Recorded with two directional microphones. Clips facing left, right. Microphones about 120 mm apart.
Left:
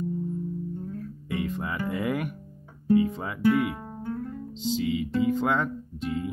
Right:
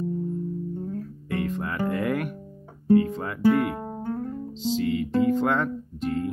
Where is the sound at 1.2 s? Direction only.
5° left (ahead or behind).